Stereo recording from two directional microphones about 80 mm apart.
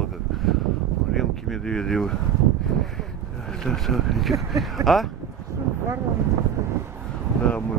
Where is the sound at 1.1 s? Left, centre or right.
Centre.